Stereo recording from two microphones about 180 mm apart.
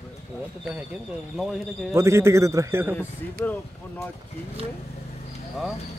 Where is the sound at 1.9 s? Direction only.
15° right (ahead or behind).